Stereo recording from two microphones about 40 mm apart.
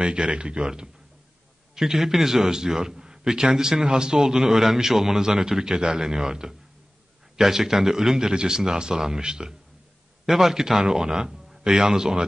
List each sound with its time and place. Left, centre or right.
0.0 s speech: right
1.8 s a man's voice: centre